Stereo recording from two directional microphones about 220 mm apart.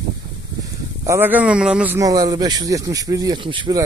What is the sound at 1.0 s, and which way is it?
A man's voice, 10° right (ahead or behind).